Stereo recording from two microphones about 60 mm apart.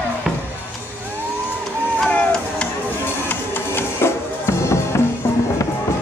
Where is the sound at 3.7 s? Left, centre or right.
Left.